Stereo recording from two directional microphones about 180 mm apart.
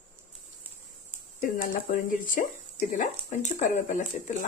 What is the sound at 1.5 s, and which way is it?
Speech, 50° left (ahead or behind).